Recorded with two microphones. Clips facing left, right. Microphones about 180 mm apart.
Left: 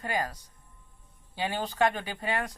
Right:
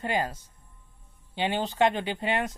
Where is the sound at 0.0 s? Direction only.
25° right (ahead or behind).